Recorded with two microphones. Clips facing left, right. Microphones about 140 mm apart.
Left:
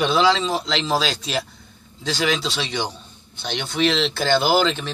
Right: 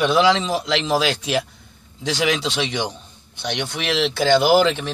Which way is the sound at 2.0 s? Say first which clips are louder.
Right 2 dB; 20° right (ahead or behind).